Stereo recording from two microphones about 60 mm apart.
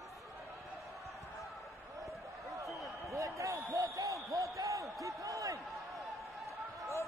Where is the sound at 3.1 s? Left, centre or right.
Right.